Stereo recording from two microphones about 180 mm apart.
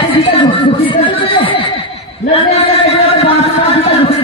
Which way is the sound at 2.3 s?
35° left (ahead or behind).